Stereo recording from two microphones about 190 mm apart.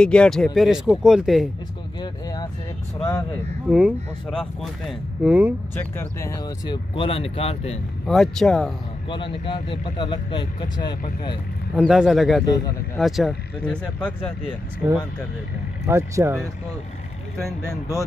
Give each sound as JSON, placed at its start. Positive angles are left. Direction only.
{"t": 0.0, "sound": "speech", "side_deg": 5}
{"t": 2.0, "sound": "speech", "side_deg": 20}
{"t": 3.6, "sound": "speech", "side_deg": -5}
{"t": 5.8, "sound": "speech", "side_deg": 15}
{"t": 8.1, "sound": "speech", "side_deg": 0}
{"t": 9.1, "sound": "speech", "side_deg": 25}
{"t": 11.7, "sound": "speech", "side_deg": -5}
{"t": 12.4, "sound": "speech", "side_deg": 20}
{"t": 12.9, "sound": "speech", "side_deg": 0}
{"t": 15.9, "sound": "speech", "side_deg": -15}
{"t": 17.6, "sound": "speech", "side_deg": 15}